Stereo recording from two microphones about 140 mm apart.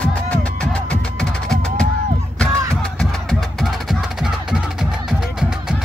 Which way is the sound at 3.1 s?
Centre (ahead or behind).